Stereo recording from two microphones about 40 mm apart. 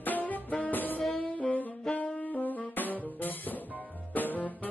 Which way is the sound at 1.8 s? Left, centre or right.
Left.